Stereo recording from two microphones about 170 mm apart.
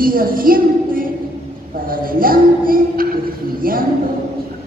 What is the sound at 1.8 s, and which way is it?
Music, 55° right (ahead or behind).